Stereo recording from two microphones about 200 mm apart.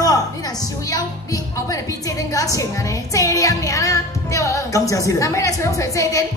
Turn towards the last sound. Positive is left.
turn(degrees=15)  # may be behind; listen again after turning